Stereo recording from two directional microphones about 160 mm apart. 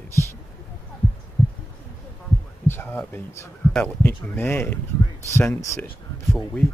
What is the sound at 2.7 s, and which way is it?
Speech, 15° left (ahead or behind).